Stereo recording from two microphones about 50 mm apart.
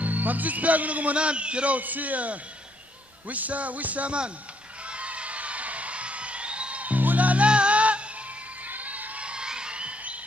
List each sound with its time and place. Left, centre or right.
0.0 s a man's voice: right
4.8 s music: right
8.6 s crowd: right